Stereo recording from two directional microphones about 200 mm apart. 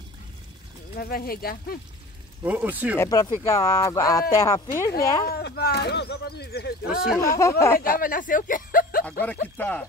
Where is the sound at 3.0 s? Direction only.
15° left (ahead or behind).